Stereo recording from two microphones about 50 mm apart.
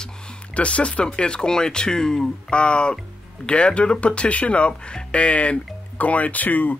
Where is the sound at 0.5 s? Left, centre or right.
Left.